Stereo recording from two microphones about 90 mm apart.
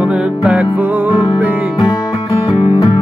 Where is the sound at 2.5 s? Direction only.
85° left.